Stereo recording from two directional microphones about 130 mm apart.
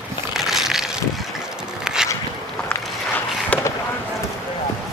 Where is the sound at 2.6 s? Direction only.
10° left (ahead or behind).